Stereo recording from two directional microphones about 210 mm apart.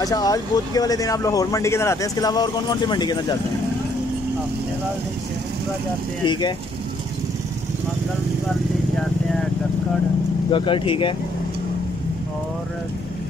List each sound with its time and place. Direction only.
0.0 s speech: 15° left (ahead or behind)
6.2 s speech: 20° left (ahead or behind)
10.5 s speech: 25° left (ahead or behind)